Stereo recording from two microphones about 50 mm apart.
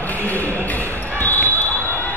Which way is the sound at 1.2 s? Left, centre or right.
Left.